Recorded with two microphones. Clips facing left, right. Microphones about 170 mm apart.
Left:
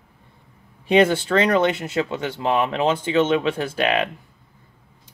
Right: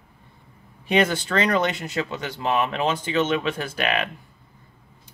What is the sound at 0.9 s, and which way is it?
Speech, 30° left (ahead or behind).